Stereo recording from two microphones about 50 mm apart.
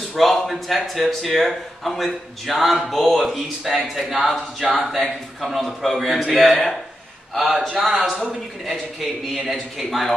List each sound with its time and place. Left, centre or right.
0.1 s speech: centre
7.7 s speech: centre
9.3 s speech: centre